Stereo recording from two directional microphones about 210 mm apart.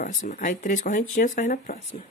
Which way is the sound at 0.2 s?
40° left (ahead or behind).